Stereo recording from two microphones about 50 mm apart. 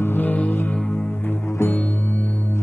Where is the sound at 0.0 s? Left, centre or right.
Left.